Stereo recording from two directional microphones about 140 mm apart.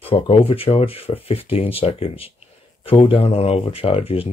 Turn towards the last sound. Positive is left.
turn(degrees=45)  # may be behind; listen again after turning